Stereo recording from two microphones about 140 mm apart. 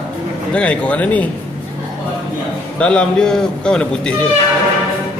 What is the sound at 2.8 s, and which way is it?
A man's voice, 10° left (ahead or behind).